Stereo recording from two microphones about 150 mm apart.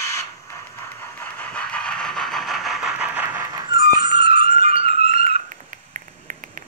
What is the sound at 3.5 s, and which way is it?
Dog, 25° right (ahead or behind).